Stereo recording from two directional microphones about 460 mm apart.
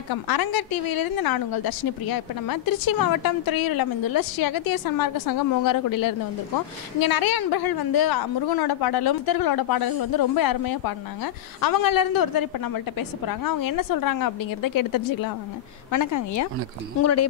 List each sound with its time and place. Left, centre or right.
0.1 s a woman's voice: left